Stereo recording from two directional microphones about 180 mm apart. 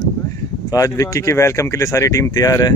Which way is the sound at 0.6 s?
20° left (ahead or behind).